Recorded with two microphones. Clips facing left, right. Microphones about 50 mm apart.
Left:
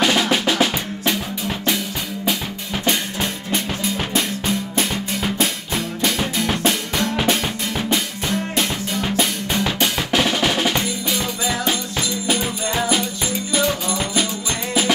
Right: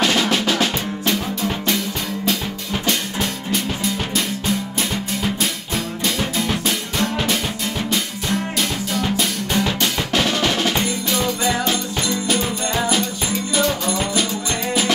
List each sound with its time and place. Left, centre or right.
0.0 s drum: centre
2.8 s music: left
4.1 s drum: left
6.0 s music: left
9.1 s music: left
9.7 s music: centre
10.8 s music: centre